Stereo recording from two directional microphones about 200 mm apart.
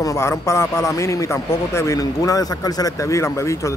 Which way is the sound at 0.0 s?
15° left (ahead or behind).